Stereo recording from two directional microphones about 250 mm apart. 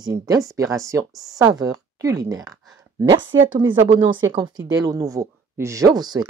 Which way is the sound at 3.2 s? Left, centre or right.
Right.